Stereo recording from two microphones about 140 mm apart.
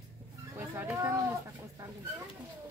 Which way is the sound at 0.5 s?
15° right (ahead or behind).